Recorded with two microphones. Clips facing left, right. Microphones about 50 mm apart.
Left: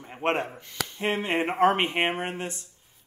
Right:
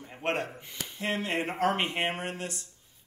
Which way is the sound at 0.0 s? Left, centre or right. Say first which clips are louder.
Left 4 dB; left.